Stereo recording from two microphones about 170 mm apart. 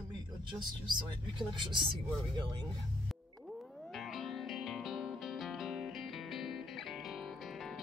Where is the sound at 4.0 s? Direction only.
Centre (ahead or behind).